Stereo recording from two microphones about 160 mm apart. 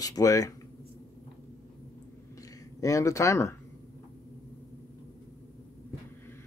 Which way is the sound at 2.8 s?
20° left (ahead or behind).